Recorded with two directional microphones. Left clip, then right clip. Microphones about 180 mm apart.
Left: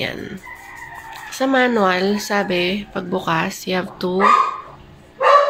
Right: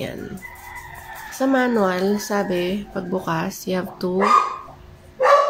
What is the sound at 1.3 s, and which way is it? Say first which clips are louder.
Speech: left 3 dB; 5° right (ahead or behind).